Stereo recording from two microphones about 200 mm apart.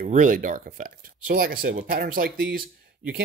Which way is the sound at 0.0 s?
40° right (ahead or behind).